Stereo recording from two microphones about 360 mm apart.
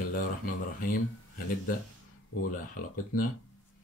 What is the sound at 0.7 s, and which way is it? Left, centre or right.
Speech, left.